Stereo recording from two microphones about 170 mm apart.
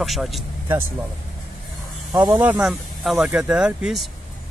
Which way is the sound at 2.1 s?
15° right (ahead or behind).